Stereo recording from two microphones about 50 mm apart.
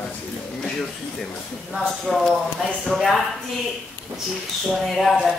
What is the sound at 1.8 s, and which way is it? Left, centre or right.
Speech, centre.